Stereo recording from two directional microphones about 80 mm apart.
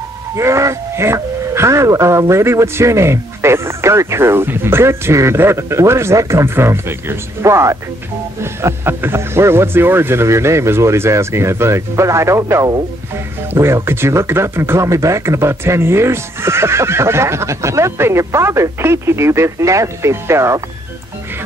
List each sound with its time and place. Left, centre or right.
0.4 s speech: right